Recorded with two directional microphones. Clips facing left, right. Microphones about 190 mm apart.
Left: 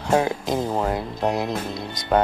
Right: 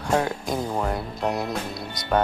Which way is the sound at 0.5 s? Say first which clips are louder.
Left 3 dB; 25° left (ahead or behind).